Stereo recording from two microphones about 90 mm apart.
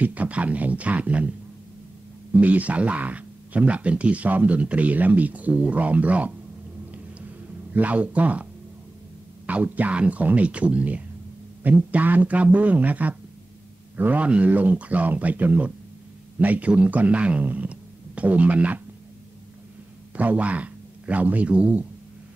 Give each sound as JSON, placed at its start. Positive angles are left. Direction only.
{"t": 0.0, "sound": "speech", "side_deg": -15}
{"t": 2.3, "sound": "speech", "side_deg": -20}
{"t": 7.7, "sound": "speech", "side_deg": -15}
{"t": 9.5, "sound": "speech", "side_deg": -15}
{"t": 20.2, "sound": "speech", "side_deg": -15}